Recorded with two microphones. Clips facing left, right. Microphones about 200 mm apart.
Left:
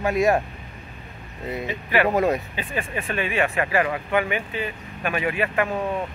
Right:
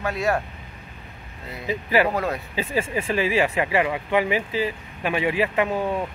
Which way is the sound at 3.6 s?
15° right (ahead or behind).